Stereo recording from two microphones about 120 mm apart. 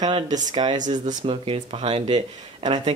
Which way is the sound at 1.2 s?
50° right (ahead or behind).